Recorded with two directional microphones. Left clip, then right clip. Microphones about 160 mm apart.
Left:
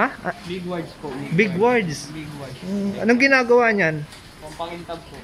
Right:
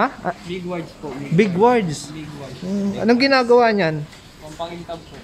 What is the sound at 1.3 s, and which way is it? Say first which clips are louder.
Speech: right 3 dB; 25° right (ahead or behind).